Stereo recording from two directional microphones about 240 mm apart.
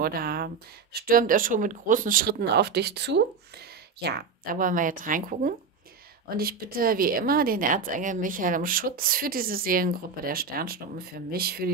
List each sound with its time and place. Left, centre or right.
0.0 s a woman's voice: right